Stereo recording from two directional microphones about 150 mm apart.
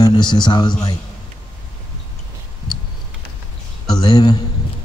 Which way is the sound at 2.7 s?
5° left (ahead or behind).